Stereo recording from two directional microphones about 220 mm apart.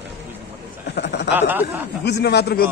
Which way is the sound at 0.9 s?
50° left (ahead or behind).